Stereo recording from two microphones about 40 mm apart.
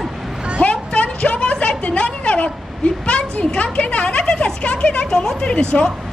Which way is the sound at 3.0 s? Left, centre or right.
Left.